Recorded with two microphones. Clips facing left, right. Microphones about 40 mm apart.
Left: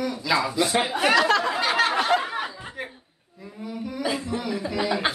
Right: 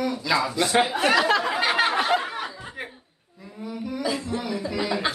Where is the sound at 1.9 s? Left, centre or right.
Centre.